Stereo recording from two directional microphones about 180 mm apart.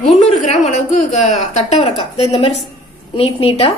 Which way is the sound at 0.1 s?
40° left (ahead or behind).